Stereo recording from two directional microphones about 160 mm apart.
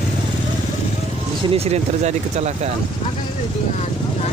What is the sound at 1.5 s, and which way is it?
Speech, 45° right (ahead or behind).